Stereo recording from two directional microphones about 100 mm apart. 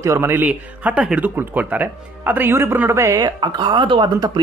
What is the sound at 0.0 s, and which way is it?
Speech, 25° right (ahead or behind).